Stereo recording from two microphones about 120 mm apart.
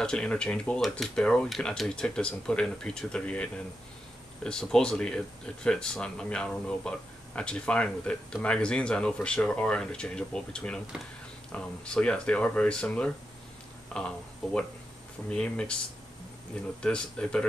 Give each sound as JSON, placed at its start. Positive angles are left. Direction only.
{"t": 0.0, "sound": "speech", "side_deg": 10}
{"t": 16.8, "sound": "speech", "side_deg": 10}